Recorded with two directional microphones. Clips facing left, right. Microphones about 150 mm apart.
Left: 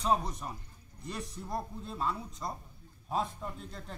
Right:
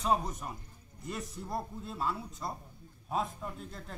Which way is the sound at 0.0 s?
5° right (ahead or behind).